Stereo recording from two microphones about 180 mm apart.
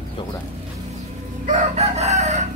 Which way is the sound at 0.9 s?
45° right (ahead or behind).